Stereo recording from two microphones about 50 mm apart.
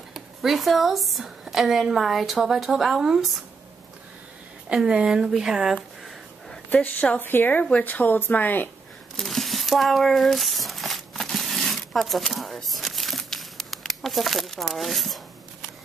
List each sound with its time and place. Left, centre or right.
0.1 s a woman's voice: centre
4.6 s speech: centre
6.7 s speech: left
9.2 s a sound: centre